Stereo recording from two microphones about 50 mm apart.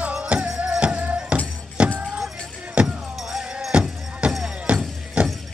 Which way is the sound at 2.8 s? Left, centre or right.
Right.